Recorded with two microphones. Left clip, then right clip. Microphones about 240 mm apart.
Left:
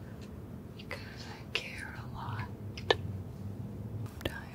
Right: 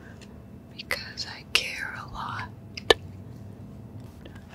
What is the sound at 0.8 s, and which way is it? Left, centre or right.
Whispering, right.